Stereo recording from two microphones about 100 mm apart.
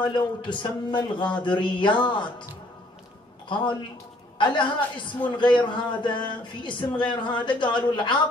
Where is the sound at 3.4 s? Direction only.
55° left (ahead or behind).